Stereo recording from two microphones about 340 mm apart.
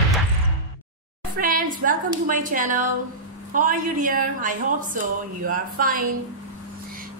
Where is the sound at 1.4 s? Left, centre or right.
Right.